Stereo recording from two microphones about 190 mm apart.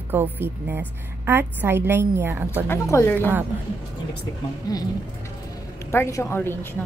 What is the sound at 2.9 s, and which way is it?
Speech, 10° left (ahead or behind).